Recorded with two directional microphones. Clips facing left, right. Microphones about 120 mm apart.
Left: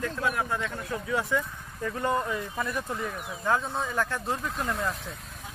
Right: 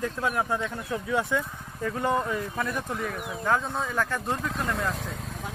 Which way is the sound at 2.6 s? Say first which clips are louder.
Right 1 dB; 5° left (ahead or behind).